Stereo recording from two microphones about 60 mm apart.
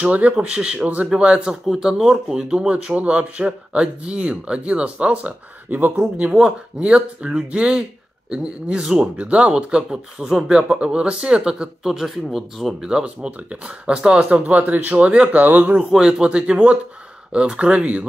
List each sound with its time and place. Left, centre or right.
0.0 s speech: right
1.7 s speech: centre; by 6.3 s right
6.3 s speech: centre
12.8 s speech: centre
15.9 s speech: centre